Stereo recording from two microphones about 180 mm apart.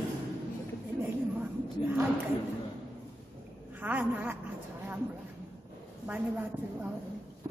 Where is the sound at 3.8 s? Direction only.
10° right (ahead or behind).